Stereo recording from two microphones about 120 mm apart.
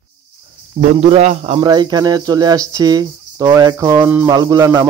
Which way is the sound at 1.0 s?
65° right (ahead or behind).